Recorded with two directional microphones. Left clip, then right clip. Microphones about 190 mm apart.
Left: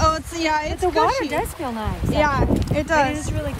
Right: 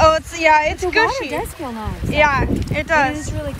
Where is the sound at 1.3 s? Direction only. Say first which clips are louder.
Even; centre (ahead or behind).